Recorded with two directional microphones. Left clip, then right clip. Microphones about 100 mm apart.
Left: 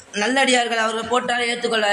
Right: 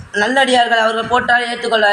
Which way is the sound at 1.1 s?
50° left (ahead or behind).